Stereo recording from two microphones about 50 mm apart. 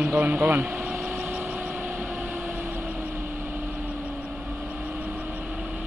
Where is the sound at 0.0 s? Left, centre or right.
Right.